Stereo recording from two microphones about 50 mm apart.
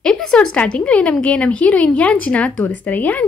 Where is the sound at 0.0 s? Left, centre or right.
Centre.